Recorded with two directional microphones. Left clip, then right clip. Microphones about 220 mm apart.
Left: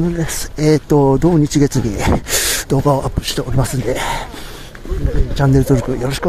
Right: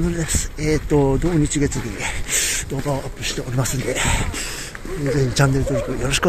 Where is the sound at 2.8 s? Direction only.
25° left (ahead or behind).